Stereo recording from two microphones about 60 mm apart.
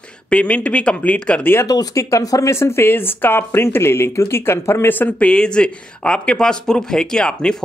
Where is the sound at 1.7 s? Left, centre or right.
Left.